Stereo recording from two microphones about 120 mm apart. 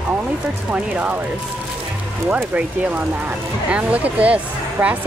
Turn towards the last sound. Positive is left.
turn(degrees=-15)  # may be behind; listen again after turning